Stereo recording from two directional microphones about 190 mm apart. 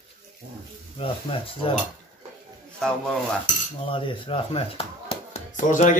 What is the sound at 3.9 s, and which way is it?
Speech, 30° left (ahead or behind).